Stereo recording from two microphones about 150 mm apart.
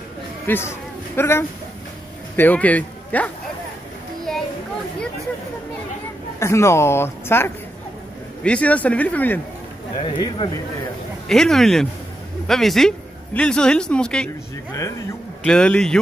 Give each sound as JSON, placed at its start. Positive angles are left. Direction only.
{"t": 0.5, "sound": "speech", "side_deg": 15}
{"t": 4.3, "sound": "children playing", "side_deg": 0}
{"t": 6.4, "sound": "speech", "side_deg": 20}
{"t": 9.9, "sound": "speech", "side_deg": 30}
{"t": 11.2, "sound": "speech", "side_deg": 5}
{"t": 15.4, "sound": "speech", "side_deg": 5}